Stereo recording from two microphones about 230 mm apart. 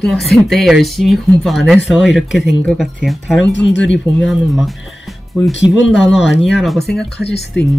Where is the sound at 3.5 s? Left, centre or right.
Left.